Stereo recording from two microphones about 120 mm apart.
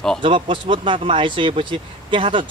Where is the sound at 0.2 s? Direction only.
45° right (ahead or behind).